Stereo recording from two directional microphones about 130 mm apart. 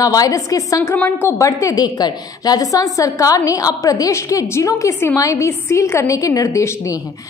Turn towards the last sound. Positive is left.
turn(degrees=25)  # may be behind; listen again after turning